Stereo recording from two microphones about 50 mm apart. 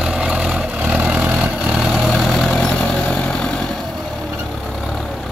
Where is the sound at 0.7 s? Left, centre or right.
Right.